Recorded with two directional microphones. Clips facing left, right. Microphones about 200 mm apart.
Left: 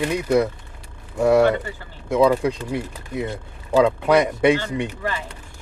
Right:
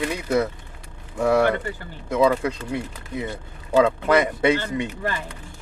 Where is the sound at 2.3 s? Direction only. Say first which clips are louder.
Left 3 dB; 15° left (ahead or behind).